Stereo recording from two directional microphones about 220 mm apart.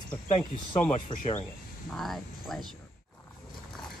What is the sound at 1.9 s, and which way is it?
Speech, centre (ahead or behind).